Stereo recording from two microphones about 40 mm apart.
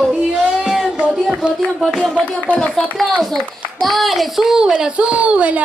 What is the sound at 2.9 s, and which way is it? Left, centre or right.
A child's voice, centre.